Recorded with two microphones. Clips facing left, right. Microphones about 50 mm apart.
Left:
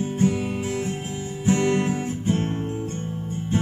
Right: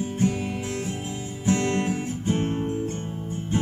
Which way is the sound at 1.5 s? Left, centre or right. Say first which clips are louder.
Left 3 dB; centre.